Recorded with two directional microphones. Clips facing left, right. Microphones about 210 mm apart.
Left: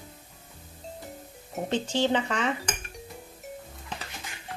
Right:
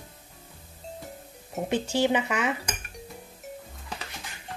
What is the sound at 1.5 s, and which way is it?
A woman's voice, 10° right (ahead or behind).